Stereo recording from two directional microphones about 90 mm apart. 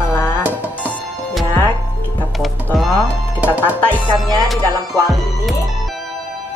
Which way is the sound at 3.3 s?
20° right (ahead or behind).